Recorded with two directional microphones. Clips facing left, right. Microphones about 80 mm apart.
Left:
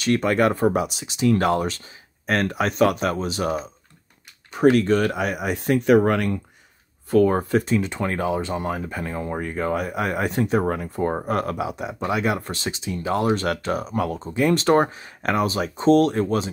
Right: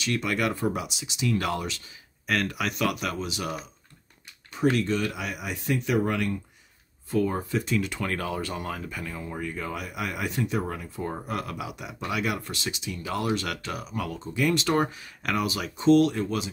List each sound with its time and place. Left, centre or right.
0.0 s speech: left
4.5 s speech: left
7.6 s speech: left